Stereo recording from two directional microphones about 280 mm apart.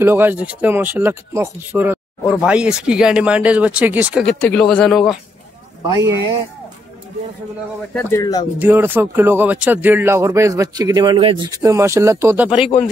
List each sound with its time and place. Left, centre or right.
0.0 s speech: centre
7.9 s speech: centre
8.5 s speech: centre
12.4 s speech: centre